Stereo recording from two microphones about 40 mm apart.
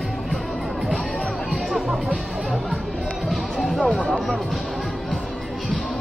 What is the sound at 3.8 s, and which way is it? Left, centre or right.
Music, centre.